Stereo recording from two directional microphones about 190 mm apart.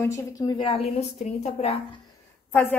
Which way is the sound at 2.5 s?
10° left (ahead or behind).